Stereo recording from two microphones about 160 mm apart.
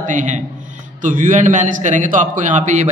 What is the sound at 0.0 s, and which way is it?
A man's voice, 50° right (ahead or behind).